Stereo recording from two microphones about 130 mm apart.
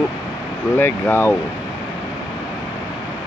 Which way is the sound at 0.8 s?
15° left (ahead or behind).